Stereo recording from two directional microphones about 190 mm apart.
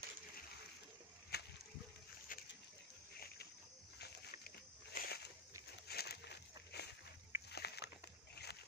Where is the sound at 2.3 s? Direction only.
45° left (ahead or behind).